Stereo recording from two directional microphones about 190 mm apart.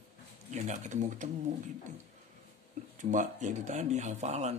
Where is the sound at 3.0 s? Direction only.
40° right (ahead or behind).